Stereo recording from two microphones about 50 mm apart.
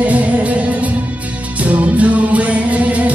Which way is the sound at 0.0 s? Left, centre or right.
Right.